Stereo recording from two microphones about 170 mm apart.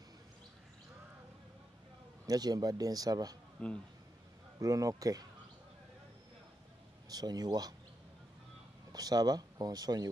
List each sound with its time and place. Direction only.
2.2 s speech: 25° right (ahead or behind)
3.6 s speech: 5° left (ahead or behind)
4.6 s speech: 20° right (ahead or behind)
7.1 s speech: 25° right (ahead or behind)
8.9 s speech: 20° right (ahead or behind)